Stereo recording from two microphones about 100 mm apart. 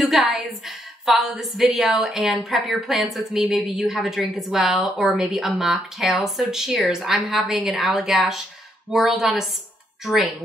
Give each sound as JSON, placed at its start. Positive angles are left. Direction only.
{"t": 0.0, "sound": "a woman's voice", "side_deg": 0}